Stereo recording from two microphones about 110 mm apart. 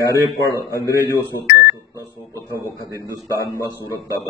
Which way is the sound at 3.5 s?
30° left (ahead or behind).